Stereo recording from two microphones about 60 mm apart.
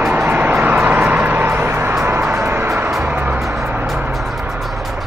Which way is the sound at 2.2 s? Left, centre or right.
Right.